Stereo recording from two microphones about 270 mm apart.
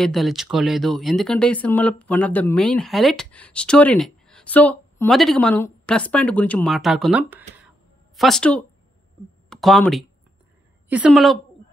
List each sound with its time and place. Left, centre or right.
0.0 s speech: centre